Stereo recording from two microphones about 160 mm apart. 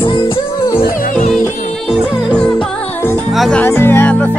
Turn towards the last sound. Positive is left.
turn(degrees=10)  # may be behind; listen again after turning